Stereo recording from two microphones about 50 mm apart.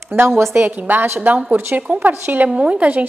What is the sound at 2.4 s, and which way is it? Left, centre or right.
Speech, right.